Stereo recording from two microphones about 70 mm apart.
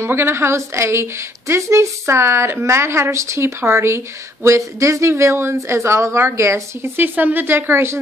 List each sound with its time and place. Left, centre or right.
0.0 s a woman's voice: right
7.0 s a woman's voice: right